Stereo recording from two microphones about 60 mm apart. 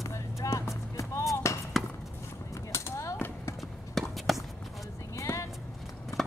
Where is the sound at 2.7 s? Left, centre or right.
Left.